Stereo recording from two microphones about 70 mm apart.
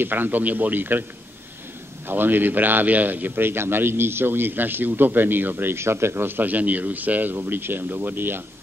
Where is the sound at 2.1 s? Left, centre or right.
Right.